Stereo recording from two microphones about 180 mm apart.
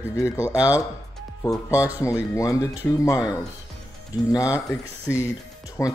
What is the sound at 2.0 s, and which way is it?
Speech, 15° left (ahead or behind).